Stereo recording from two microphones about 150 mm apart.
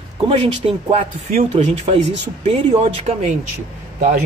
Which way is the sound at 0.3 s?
40° right (ahead or behind).